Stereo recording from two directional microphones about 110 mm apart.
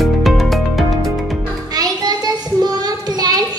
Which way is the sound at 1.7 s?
35° right (ahead or behind).